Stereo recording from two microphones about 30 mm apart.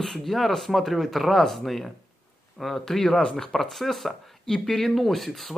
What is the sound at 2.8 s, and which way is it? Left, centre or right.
Speech, centre.